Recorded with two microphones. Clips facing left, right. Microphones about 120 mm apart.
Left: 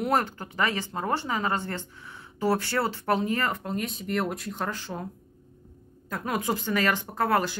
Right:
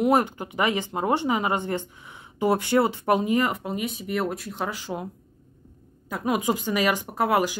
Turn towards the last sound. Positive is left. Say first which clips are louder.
# right 2 dB
turn(degrees=-10)  # may be behind; listen again after turning